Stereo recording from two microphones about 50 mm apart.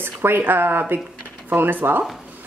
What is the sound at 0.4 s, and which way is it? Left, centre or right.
A woman's voice, right.